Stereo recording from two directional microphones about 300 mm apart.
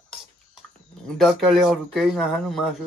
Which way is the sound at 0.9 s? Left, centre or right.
Centre.